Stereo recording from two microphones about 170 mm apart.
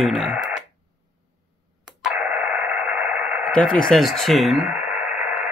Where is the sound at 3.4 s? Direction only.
5° left (ahead or behind).